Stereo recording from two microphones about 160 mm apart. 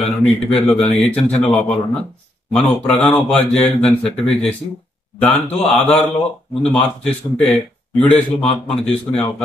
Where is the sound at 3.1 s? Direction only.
10° left (ahead or behind).